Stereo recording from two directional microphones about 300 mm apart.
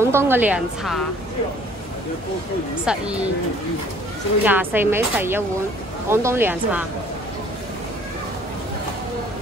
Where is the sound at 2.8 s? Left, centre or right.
Centre.